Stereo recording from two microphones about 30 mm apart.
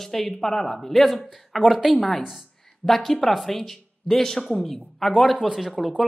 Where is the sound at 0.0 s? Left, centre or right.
Centre.